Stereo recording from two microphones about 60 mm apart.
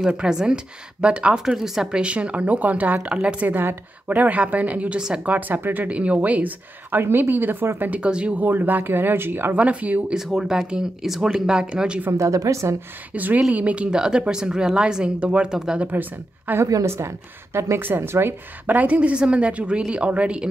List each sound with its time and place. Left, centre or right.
0.1 s a woman's voice: centre
3.4 s a woman's voice: right
8.0 s speech: centre; by 9.6 s right
9.6 s a woman's voice: right
10.1 s speech: centre
12.1 s speech: right
13.1 s a woman's voice: right; by 15.9 s centre
15.9 s speech: right
16.8 s a woman's voice: right
17.7 s speech: right
18.7 s a woman's voice: right